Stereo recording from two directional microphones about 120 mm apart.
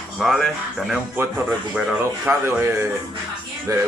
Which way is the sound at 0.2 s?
Centre (ahead or behind).